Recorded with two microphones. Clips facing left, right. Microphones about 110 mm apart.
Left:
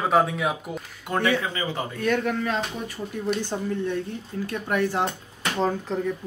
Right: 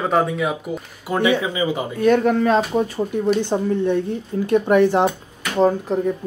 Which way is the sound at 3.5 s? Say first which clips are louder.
Right 8 dB; 25° right (ahead or behind).